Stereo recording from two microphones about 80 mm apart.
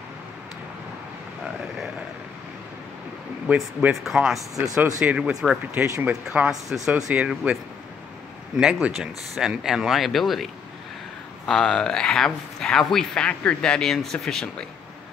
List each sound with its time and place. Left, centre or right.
3.9 s speech: centre
5.8 s speech: right
6.2 s speech: centre
8.5 s a man's voice: centre